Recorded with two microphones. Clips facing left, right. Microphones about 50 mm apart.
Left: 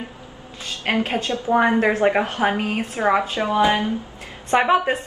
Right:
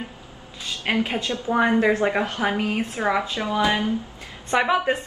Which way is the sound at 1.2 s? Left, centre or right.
Left.